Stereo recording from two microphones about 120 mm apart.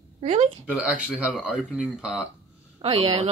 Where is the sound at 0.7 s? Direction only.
5° right (ahead or behind).